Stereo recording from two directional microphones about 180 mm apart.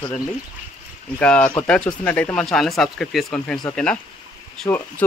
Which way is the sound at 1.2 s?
5° left (ahead or behind).